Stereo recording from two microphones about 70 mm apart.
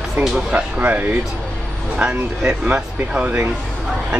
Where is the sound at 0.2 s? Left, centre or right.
Right.